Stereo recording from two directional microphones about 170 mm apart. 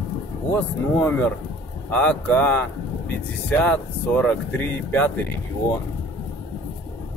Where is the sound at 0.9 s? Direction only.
15° left (ahead or behind).